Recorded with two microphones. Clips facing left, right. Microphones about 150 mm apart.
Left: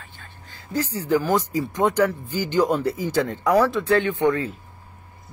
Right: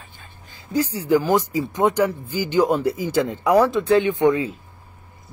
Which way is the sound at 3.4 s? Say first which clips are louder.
Right 3 dB; 20° right (ahead or behind).